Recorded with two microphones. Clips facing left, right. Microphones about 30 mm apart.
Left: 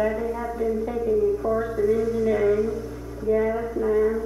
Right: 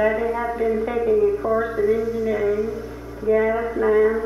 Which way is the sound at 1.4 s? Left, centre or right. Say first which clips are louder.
Right 3 dB; right.